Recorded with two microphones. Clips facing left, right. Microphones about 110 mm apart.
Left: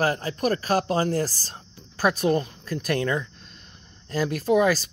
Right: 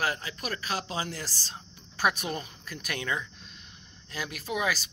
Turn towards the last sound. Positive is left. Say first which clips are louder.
# left 11 dB
turn(degrees=40)  # may be behind; listen again after turning